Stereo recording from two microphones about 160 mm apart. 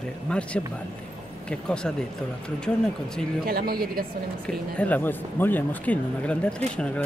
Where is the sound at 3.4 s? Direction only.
70° right (ahead or behind).